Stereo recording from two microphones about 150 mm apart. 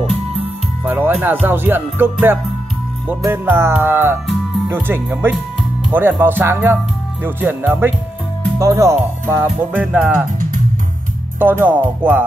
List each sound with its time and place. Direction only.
0.0 s music: 40° right (ahead or behind)
0.8 s music: 10° right (ahead or behind)
8.5 s speech: 20° right (ahead or behind)
9.2 s music: 15° right (ahead or behind)
11.3 s music: 15° right (ahead or behind)